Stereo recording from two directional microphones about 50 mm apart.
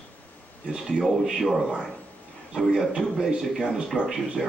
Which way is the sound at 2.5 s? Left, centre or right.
Centre.